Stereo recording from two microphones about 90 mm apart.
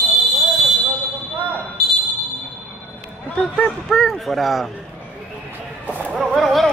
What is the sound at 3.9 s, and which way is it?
Speech, centre (ahead or behind).